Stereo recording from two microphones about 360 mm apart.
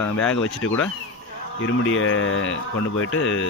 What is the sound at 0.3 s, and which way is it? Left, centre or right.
Speech, left.